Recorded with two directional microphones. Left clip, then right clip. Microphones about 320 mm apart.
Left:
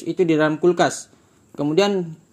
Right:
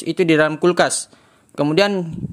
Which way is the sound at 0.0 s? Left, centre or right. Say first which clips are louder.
Right 3 dB; right.